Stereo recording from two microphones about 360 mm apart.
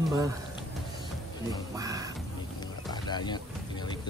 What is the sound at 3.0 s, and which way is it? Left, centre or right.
Music, centre.